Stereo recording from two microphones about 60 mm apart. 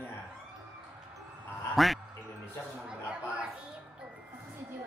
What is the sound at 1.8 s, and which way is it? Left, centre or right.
Speech, centre.